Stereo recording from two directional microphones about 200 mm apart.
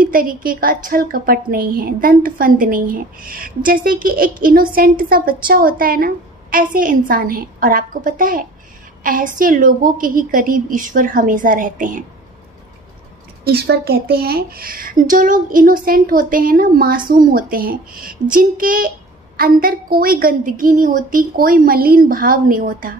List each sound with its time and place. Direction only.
0.0 s speech: 45° right (ahead or behind)
13.4 s speech: 50° right (ahead or behind)